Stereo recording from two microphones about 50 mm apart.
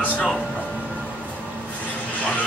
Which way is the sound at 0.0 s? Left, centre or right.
Left.